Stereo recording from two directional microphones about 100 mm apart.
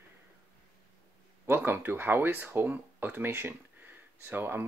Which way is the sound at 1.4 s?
25° right (ahead or behind).